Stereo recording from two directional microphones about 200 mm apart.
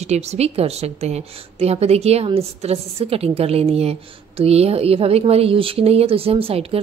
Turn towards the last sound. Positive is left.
turn(degrees=-30)  # may be behind; listen again after turning